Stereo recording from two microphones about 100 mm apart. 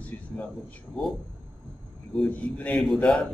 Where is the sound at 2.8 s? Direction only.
Centre (ahead or behind).